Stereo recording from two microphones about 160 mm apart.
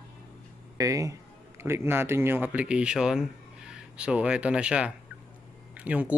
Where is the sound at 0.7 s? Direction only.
20° right (ahead or behind).